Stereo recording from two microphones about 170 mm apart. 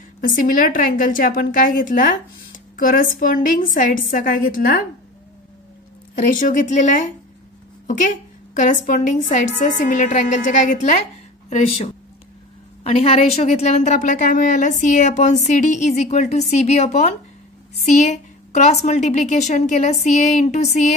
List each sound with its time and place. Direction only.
0.2 s a woman's voice: 55° left (ahead or behind)
6.3 s a woman's voice: 50° left (ahead or behind)
7.8 s a sound: 50° left (ahead or behind)
8.5 s a woman's voice: 50° left (ahead or behind)